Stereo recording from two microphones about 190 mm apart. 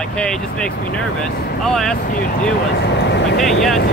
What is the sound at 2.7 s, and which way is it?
Speech, 60° left (ahead or behind).